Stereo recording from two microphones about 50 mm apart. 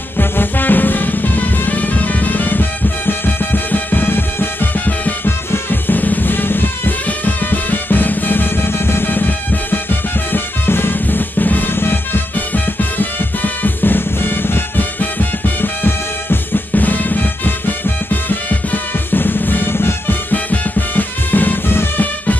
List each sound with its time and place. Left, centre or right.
0.2 s music: left
4.7 s music: left